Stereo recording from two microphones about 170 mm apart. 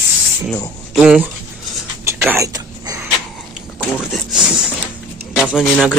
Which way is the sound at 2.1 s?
15° right (ahead or behind).